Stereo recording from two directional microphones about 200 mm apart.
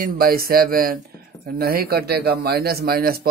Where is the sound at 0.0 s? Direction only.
45° right (ahead or behind).